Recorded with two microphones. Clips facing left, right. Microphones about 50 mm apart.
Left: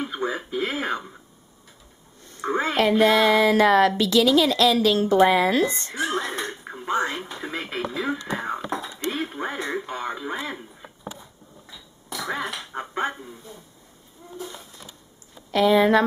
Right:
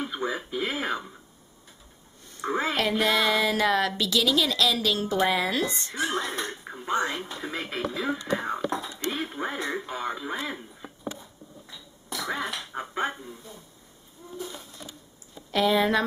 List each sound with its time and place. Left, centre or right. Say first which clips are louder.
0.0 s a sound: left 3 dB; centre
2.4 s speech: left 3 dB; centre
3.0 s music: left 6 dB; left
4.0 s a woman's voice: left 6 dB; left
4.9 s speech: left 7 dB; centre
5.3 s music: left 6 dB; left
5.9 s speech: left 1 dB; centre
8.6 s whispering: even; centre
9.1 s speech: left 2 dB; centre
11.7 s a sound: left 1 dB; centre
15.5 s speech: left 5 dB; centre